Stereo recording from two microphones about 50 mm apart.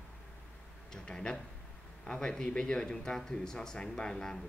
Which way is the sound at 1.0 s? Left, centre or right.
Centre.